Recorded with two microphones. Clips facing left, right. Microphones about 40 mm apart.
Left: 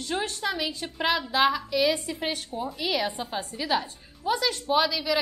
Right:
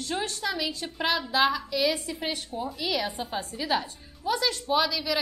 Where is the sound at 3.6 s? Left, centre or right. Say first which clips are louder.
Left 1 dB; centre.